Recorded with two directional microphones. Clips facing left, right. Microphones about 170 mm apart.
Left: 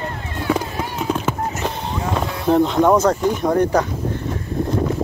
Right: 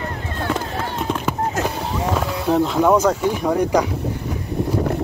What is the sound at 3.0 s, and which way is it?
Speech, 5° right (ahead or behind).